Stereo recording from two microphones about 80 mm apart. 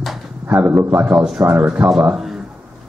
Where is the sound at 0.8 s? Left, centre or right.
Right.